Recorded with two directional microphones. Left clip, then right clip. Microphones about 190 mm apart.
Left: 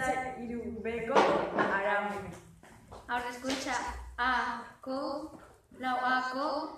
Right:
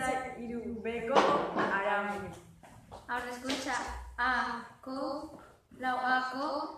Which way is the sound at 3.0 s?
15° left (ahead or behind).